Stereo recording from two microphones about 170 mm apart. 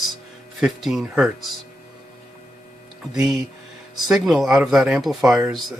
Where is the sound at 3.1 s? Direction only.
Centre (ahead or behind).